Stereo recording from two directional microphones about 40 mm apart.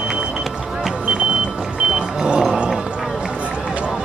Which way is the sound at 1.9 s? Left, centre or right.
Right.